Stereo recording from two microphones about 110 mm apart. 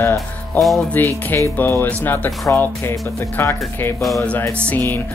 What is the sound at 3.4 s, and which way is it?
Speech, 20° left (ahead or behind).